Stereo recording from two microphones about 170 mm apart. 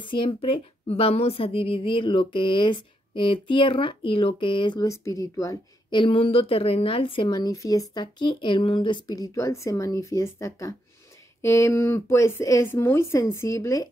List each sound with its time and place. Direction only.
0.0 s a woman's voice: 30° left (ahead or behind)